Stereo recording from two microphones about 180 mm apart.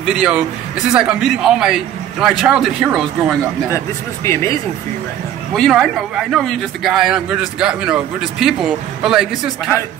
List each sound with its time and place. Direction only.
0.0 s a man's voice: 5° right (ahead or behind)
3.7 s speech: 15° left (ahead or behind)
5.5 s a man's voice: centre (ahead or behind)